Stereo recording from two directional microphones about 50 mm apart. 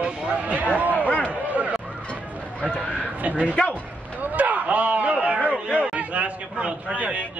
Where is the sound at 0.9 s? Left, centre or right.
Left.